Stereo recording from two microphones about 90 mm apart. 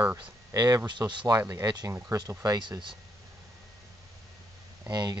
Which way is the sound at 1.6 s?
50° right (ahead or behind).